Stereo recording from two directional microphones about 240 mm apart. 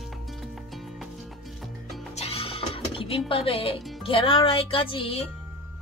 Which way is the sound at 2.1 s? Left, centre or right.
Left.